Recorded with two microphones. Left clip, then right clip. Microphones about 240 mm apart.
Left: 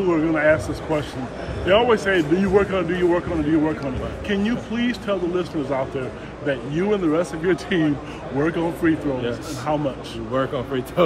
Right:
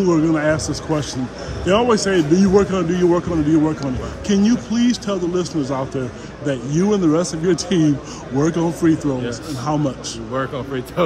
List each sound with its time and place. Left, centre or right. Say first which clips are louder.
0.0 s a man's voice: right 2 dB; right
10.3 s speech: left 1 dB; centre